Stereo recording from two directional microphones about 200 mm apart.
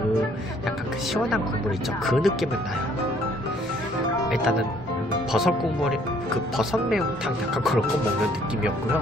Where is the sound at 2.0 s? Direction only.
Centre (ahead or behind).